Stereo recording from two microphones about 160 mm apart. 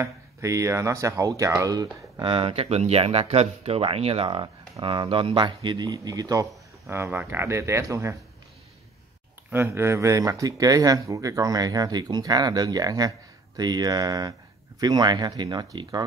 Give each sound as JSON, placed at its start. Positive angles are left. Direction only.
{"t": 0.0, "sound": "speech", "side_deg": -20}
{"t": 9.5, "sound": "speech", "side_deg": -15}